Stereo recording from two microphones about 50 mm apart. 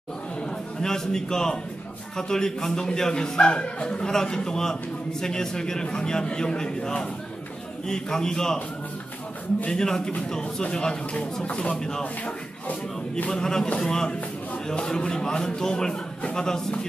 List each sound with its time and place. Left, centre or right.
0.7 s a man's voice: centre
9.7 s a man's voice: centre
13.3 s a man's voice: centre